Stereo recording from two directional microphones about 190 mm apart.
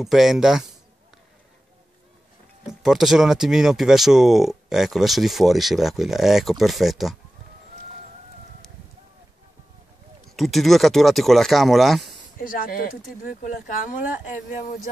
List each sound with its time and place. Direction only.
0.0 s speech: centre (ahead or behind)
2.6 s speech: centre (ahead or behind)
10.3 s speech: centre (ahead or behind)
12.4 s speech: 50° left (ahead or behind)